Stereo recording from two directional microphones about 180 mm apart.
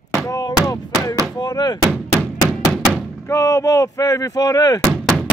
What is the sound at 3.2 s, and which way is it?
Speech, 15° left (ahead or behind).